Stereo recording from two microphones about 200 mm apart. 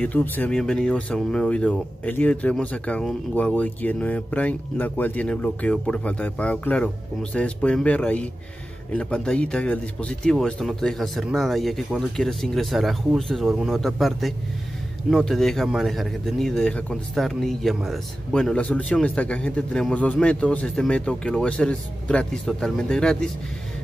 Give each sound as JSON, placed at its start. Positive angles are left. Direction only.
{"t": 0.0, "sound": "speech", "side_deg": 10}